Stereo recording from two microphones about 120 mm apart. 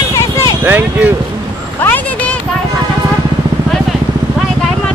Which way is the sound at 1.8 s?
15° left (ahead or behind).